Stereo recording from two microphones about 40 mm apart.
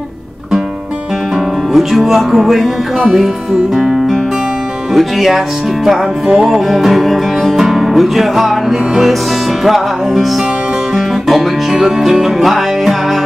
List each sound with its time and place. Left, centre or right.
1.7 s music: centre
3.7 s music: centre
6.2 s music: centre
6.5 s music: centre
11.2 s music: centre